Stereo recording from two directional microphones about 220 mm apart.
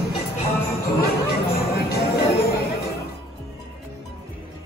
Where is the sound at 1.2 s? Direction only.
45° left (ahead or behind).